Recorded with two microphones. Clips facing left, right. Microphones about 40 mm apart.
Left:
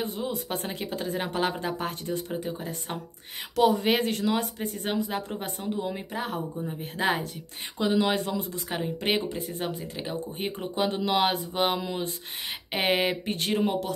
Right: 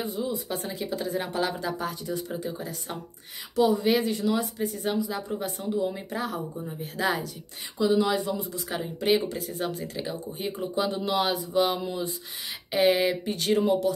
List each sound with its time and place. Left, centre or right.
0.0 s speech: left
3.5 s speech: left
7.8 s speech: left
8.6 s speech: left
9.6 s speech: left